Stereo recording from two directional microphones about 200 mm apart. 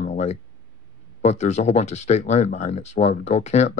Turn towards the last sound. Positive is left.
turn(degrees=35)  # may be behind; listen again after turning